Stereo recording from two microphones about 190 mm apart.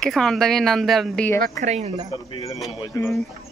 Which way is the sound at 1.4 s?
40° right (ahead or behind).